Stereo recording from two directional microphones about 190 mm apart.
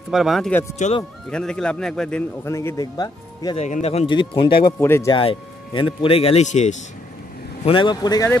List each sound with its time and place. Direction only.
0.1 s a man's voice: centre (ahead or behind)
0.7 s speech: 35° left (ahead or behind)
1.3 s a man's voice: 5° left (ahead or behind); by 3.5 s 20° left (ahead or behind)
3.5 s speech: 35° left (ahead or behind)
4.7 s speech: 15° left (ahead or behind)
5.1 s speech: 25° left (ahead or behind)
7.6 s speech: 25° left (ahead or behind)